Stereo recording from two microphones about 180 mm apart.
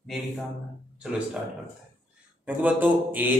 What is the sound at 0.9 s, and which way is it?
Speech, 5° right (ahead or behind).